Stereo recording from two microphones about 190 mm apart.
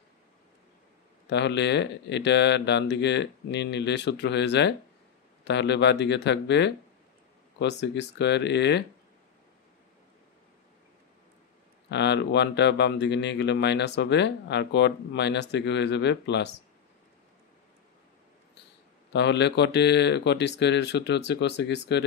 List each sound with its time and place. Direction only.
1.2 s speech: 65° left (ahead or behind)
7.8 s speech: 65° left (ahead or behind)
11.9 s speech: 65° left (ahead or behind)
19.1 s speech: 65° left (ahead or behind)